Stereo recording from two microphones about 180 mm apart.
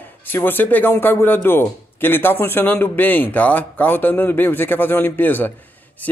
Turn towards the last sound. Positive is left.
turn(degrees=10)  # may be behind; listen again after turning